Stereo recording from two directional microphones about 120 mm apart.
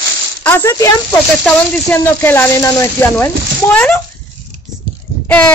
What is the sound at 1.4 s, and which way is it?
Speech, 10° left (ahead or behind).